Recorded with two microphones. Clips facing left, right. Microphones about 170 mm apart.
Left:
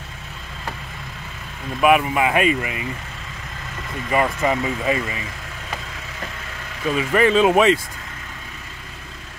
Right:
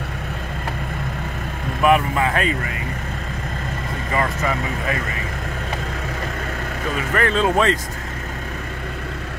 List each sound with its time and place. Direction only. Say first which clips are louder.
1.8 s speech: left 1 dB; 10° left (ahead or behind)
4.1 s speech: left 3 dB; 20° left (ahead or behind)
7.0 s speech: left 4 dB; 15° left (ahead or behind)